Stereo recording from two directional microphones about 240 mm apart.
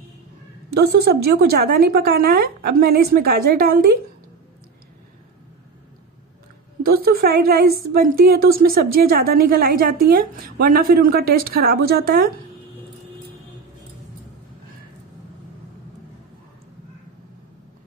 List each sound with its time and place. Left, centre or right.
0.7 s a woman's voice: right
6.8 s a woman's voice: right